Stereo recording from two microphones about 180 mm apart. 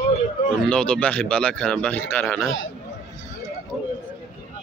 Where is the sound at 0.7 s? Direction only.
5° left (ahead or behind).